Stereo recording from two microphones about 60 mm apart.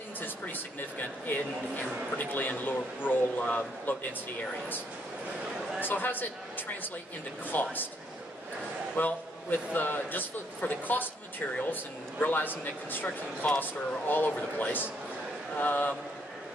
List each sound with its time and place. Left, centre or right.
0.2 s a sound: left
2.1 s a man's voice: left
5.8 s a man's voice: left
8.9 s a man's voice: left